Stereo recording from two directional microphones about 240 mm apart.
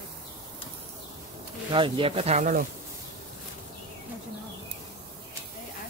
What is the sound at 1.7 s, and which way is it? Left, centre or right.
Speech, right.